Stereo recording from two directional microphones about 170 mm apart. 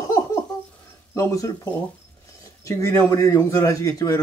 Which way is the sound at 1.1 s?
20° left (ahead or behind).